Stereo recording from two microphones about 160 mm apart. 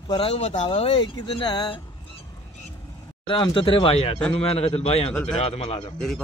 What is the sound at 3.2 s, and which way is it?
Speech, 30° left (ahead or behind).